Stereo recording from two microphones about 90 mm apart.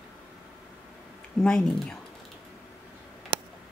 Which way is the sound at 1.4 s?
5° left (ahead or behind).